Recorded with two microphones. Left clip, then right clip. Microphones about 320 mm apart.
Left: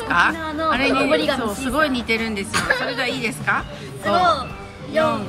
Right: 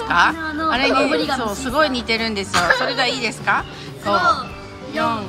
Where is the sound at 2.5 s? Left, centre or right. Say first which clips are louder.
Right 4 dB; right.